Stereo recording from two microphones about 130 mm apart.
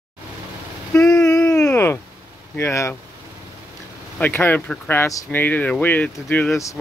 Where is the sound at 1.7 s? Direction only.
20° left (ahead or behind).